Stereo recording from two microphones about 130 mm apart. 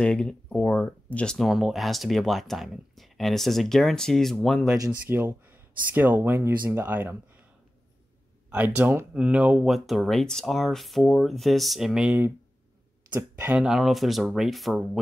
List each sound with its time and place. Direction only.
0.0 s speech: 5° left (ahead or behind)
4.7 s speech: 20° right (ahead or behind)
8.5 s speech: 10° right (ahead or behind)
13.5 s speech: 5° right (ahead or behind)